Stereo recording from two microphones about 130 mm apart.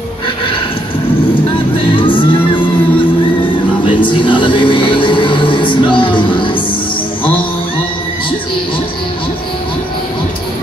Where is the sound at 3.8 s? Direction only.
40° left (ahead or behind).